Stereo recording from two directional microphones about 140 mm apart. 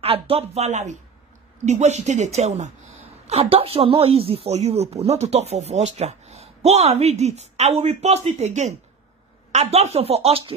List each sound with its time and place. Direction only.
0.0 s speech: 45° right (ahead or behind)